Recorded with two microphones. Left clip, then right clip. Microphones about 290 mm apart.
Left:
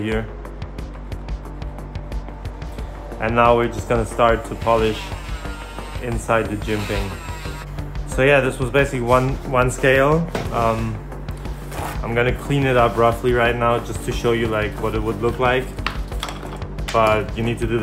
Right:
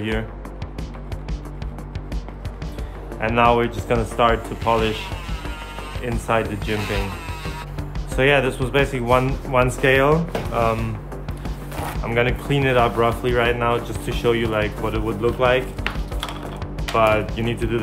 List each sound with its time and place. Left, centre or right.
3.2 s speech: centre
6.0 s speech: centre
12.0 s speech: centre